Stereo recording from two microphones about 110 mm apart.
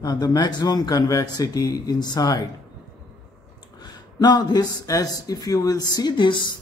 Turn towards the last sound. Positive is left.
turn(degrees=45)  # may be behind; listen again after turning